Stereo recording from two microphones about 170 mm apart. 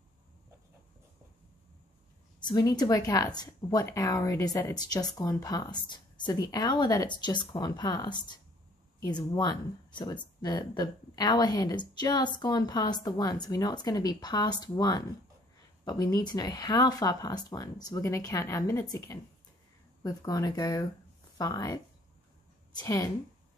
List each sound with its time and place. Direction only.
2.4 s speech: 25° left (ahead or behind)
22.8 s speech: 20° left (ahead or behind)